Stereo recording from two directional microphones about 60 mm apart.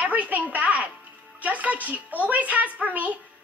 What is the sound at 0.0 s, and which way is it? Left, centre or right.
A woman's voice, right.